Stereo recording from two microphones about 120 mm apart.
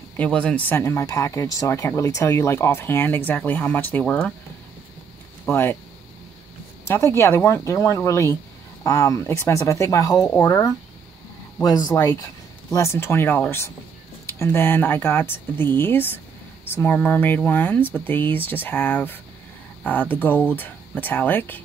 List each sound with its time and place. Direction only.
0.2 s speech: 10° left (ahead or behind)
5.5 s speech: 20° left (ahead or behind)
6.9 s speech: 20° left (ahead or behind)
11.6 s speech: 30° left (ahead or behind); by 21.5 s 15° left (ahead or behind)